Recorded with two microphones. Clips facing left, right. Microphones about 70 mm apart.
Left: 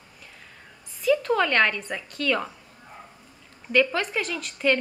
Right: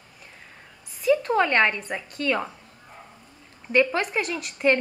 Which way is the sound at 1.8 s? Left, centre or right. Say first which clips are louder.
Right 1 dB; centre.